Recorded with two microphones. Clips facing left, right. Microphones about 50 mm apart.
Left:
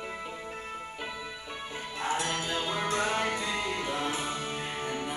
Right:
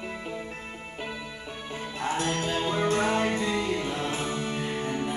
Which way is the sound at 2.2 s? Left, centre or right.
Right.